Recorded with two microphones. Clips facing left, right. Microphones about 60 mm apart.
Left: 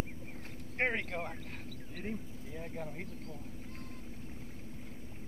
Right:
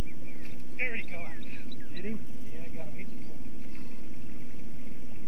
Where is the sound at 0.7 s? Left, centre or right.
Left.